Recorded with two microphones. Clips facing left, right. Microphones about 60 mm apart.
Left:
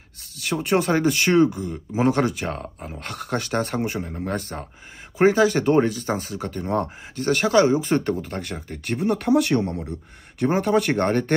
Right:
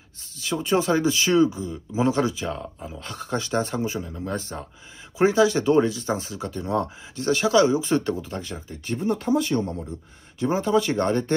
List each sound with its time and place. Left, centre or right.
0.4 s speech: left
4.1 s speech: left
10.4 s speech: left